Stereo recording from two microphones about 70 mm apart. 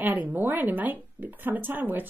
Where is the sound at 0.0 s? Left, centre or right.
Right.